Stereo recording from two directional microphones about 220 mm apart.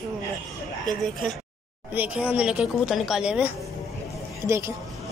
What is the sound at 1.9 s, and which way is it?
A woman's voice, 5° right (ahead or behind).